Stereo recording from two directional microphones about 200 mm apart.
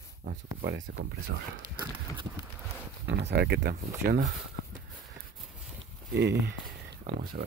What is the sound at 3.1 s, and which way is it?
Speech, 60° right (ahead or behind).